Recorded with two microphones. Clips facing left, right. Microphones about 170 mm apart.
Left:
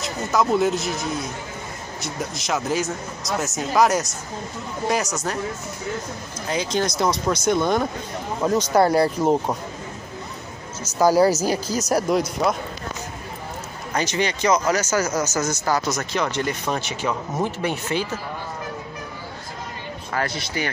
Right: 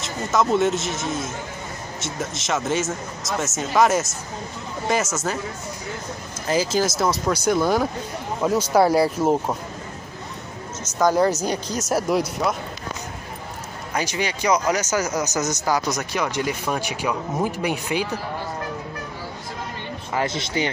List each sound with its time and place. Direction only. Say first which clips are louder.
0.0 s speech: even; centre (ahead or behind)
6.4 s speech: right 2 dB; 5° right (ahead or behind)
11.0 s speech: left 2 dB; 5° left (ahead or behind)
13.9 s speech: left 2 dB; 10° right (ahead or behind)
20.1 s speech: right 2 dB; 20° right (ahead or behind)